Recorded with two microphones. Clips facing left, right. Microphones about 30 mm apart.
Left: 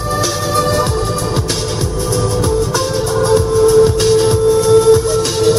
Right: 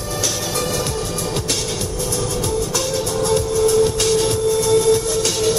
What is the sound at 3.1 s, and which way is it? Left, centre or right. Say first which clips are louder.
Music: left 7 dB; left.